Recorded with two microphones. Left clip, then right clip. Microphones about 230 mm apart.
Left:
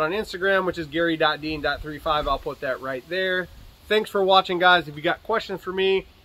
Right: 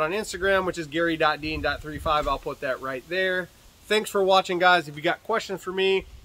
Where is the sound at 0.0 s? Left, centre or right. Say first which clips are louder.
Left 2 dB; centre.